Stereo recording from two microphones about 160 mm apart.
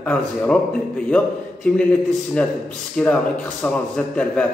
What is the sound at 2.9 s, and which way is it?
Speech, 10° left (ahead or behind).